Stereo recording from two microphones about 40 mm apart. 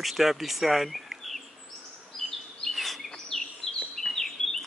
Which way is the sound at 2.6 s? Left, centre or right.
Centre.